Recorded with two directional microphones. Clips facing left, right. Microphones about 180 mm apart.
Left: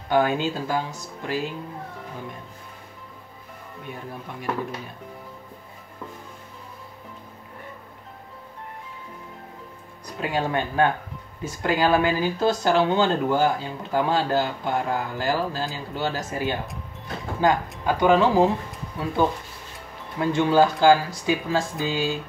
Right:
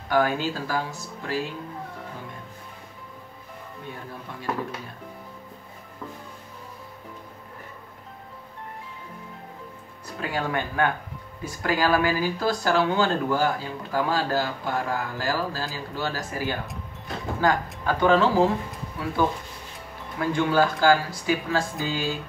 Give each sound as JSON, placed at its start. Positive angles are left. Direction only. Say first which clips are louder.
{"t": 0.1, "sound": "speech", "louder": "left 2 dB", "side_deg": 20}
{"t": 10.0, "sound": "speech", "louder": "left 3 dB", "side_deg": 20}
{"t": 20.2, "sound": "speech", "louder": "left 3 dB", "side_deg": 20}